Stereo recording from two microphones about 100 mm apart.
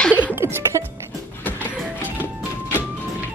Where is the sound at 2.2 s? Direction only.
20° left (ahead or behind).